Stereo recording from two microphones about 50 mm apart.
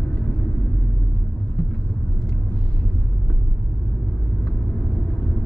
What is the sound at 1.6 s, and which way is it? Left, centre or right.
Vehicle, centre.